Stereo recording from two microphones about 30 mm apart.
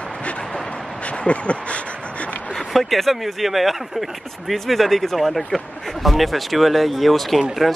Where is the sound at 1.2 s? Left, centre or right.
Left.